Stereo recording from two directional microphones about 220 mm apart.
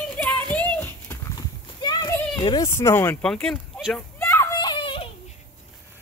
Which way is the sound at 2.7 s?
10° left (ahead or behind).